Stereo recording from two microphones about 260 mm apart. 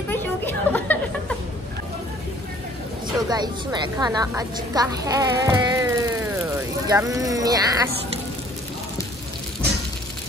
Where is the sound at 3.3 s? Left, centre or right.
Centre.